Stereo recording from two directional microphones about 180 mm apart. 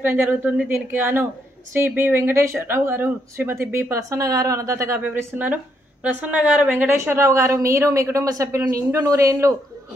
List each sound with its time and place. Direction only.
0.0 s speech: 10° right (ahead or behind)